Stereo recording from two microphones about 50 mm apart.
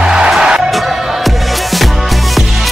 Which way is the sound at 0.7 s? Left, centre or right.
Centre.